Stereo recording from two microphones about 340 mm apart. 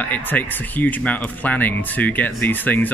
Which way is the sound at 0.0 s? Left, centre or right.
Centre.